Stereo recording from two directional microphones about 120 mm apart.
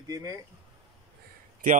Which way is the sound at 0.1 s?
30° right (ahead or behind).